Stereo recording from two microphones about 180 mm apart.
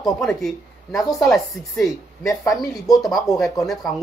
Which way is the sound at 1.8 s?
20° left (ahead or behind).